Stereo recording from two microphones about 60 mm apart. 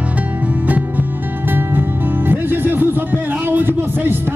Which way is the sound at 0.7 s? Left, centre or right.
Right.